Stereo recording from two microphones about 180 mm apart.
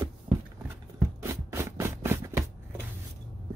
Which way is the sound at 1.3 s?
15° right (ahead or behind).